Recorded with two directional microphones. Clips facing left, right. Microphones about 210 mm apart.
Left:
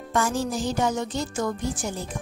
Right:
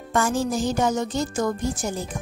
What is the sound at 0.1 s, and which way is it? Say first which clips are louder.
Speech: right 2 dB; 50° right (ahead or behind).